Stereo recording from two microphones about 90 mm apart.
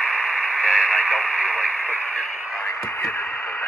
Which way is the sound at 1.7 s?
25° left (ahead or behind).